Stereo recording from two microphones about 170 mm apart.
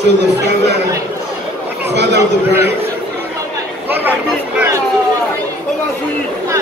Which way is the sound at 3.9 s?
10° right (ahead or behind).